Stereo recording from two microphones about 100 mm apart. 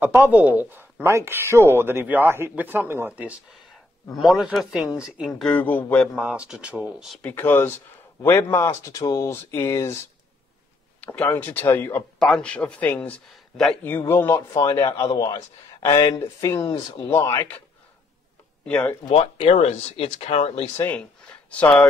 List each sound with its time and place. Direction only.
0.0 s speech: 15° right (ahead or behind)
4.2 s a man's voice: centre (ahead or behind)
5.4 s a man's voice: 15° left (ahead or behind)
6.1 s speech: 10° right (ahead or behind)
7.2 s speech: 20° left (ahead or behind)
11.0 s speech: 15° left (ahead or behind)
12.2 s a man's voice: 5° left (ahead or behind)
13.8 s speech: 20° left (ahead or behind)
14.7 s a man's voice: 50° left (ahead or behind)
15.0 s a man's voice: 40° left (ahead or behind)
18.7 s a man's voice: 10° left (ahead or behind)
19.3 s speech: 70° left (ahead or behind); by 20.5 s 90° left
21.5 s speech: 10° left (ahead or behind)